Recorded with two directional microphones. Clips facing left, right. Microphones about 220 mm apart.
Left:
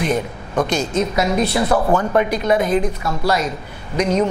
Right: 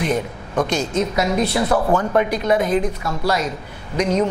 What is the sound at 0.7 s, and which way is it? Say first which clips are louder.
A man's voice: left 1 dB; 15° left (ahead or behind).